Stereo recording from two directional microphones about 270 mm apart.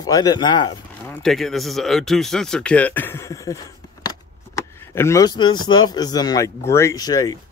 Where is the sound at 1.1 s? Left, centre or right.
Centre.